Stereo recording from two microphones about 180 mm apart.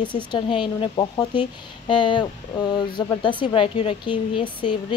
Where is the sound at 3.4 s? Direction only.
30° left (ahead or behind).